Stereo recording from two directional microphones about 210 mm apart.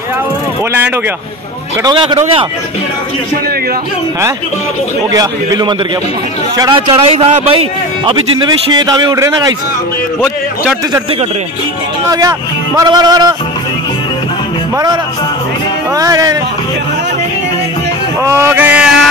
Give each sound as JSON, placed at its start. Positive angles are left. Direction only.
{"t": 1.8, "sound": "a man's voice", "side_deg": -20}
{"t": 5.1, "sound": "a man's voice", "side_deg": -15}
{"t": 12.1, "sound": "speech", "side_deg": -15}
{"t": 16.0, "sound": "speech", "side_deg": -15}
{"t": 18.2, "sound": "speech", "side_deg": -10}